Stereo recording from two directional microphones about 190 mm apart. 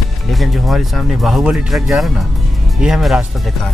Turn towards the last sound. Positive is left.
turn(degrees=0)  # may be behind; listen again after turning